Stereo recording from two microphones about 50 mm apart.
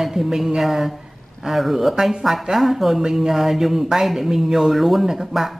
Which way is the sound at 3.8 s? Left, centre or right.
Centre.